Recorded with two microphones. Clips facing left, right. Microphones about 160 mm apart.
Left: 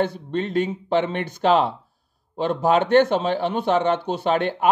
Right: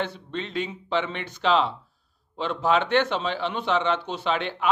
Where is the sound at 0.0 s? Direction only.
45° left (ahead or behind).